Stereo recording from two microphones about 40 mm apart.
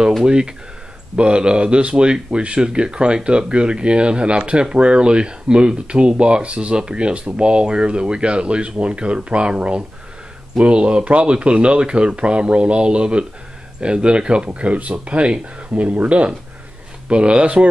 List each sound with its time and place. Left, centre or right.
0.2 s speech: right
15.7 s speech: right
17.1 s speech: right